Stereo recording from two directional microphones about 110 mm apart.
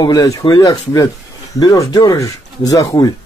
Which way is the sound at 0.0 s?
35° left (ahead or behind).